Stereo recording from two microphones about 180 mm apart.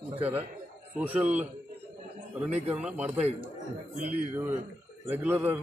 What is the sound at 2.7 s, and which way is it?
Speech, 5° right (ahead or behind).